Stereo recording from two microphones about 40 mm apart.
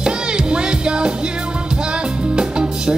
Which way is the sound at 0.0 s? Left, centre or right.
Right.